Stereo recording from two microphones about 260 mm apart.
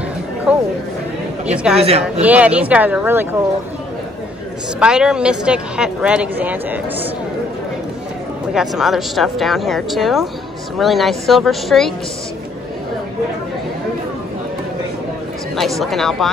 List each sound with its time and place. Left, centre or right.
0.5 s speech: centre
1.8 s speech: right
2.2 s speech: centre
4.7 s speech: centre
8.5 s speech: centre
15.8 s speech: centre